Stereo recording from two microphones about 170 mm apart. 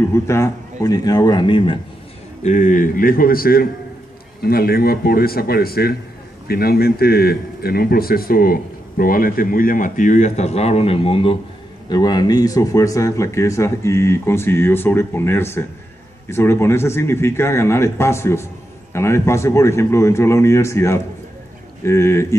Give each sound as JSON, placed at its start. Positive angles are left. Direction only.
{"t": 0.1, "sound": "a man's voice", "side_deg": 15}
{"t": 2.4, "sound": "a man's voice", "side_deg": 45}